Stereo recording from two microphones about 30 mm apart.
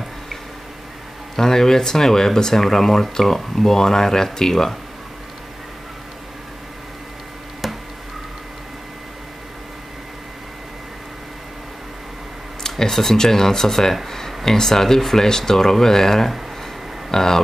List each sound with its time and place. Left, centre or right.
1.3 s speech: centre
7.6 s a sound: centre
12.6 s speech: centre